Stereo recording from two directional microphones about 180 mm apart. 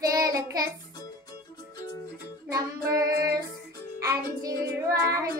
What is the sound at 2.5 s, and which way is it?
Child singing, 20° right (ahead or behind).